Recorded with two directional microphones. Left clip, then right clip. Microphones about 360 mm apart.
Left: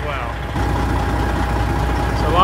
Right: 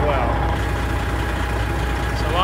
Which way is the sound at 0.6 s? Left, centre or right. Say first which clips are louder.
Left 4 dB; centre.